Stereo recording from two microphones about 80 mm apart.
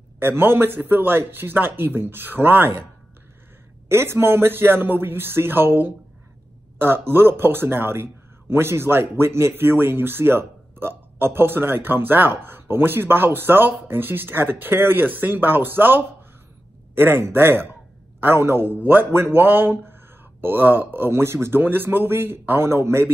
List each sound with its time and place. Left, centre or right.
0.2 s speech: right
3.9 s speech: right